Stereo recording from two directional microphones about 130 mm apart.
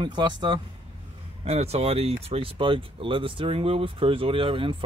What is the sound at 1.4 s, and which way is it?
Speech, 55° right (ahead or behind).